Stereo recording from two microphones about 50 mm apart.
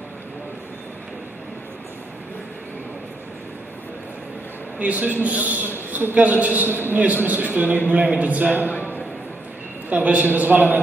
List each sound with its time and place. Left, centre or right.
4.7 s a man's voice: right
9.8 s a man's voice: right